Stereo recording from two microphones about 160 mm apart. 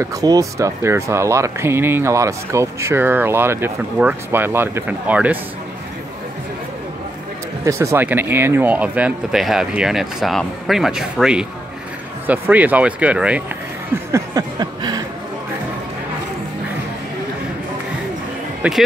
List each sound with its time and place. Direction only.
0.0 s speech: 20° right (ahead or behind)
7.6 s speech: 20° right (ahead or behind)
14.1 s a sound: 25° right (ahead or behind)
18.6 s speech: 10° right (ahead or behind)